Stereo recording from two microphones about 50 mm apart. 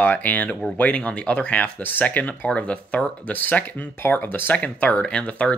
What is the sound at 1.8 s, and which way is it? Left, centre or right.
Speech, left.